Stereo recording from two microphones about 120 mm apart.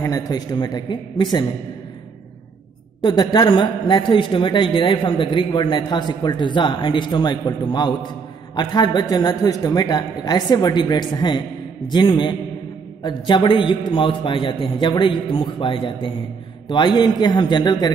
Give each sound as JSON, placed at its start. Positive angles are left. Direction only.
{"t": 0.0, "sound": "a man's voice", "side_deg": 30}
{"t": 3.0, "sound": "a man's voice", "side_deg": 40}